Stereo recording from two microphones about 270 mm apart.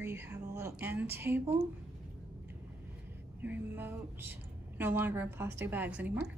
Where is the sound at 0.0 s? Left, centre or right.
Centre.